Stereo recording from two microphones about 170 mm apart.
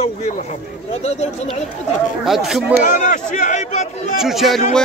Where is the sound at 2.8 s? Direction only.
45° left (ahead or behind).